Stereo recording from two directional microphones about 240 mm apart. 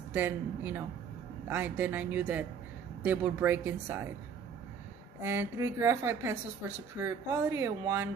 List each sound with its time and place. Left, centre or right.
0.1 s speech: centre
5.2 s speech: centre